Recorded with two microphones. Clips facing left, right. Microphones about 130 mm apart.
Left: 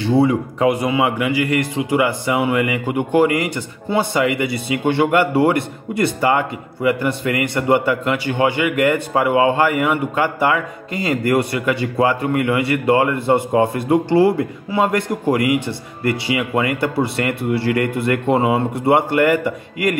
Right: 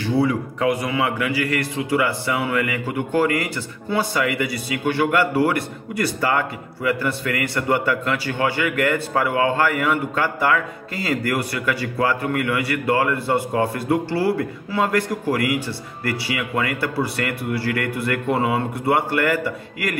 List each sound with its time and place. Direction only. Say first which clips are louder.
0.0 s a man's voice: left 4 dB; 25° left (ahead or behind)